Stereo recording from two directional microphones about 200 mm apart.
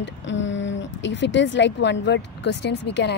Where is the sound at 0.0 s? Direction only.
65° left (ahead or behind).